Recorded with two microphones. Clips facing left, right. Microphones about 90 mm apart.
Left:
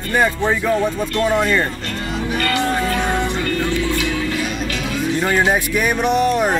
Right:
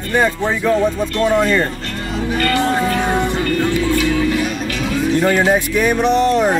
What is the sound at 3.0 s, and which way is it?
Music, 15° right (ahead or behind).